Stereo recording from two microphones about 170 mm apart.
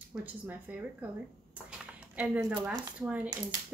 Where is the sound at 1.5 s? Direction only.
10° right (ahead or behind).